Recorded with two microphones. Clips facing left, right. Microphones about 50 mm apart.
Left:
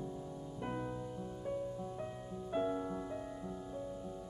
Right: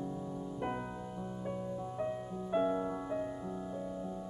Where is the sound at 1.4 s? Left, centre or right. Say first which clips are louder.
Even; centre.